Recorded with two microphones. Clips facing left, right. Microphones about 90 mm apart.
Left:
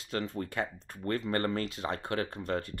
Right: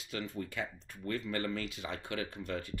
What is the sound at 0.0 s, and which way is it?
Speech, 40° left (ahead or behind).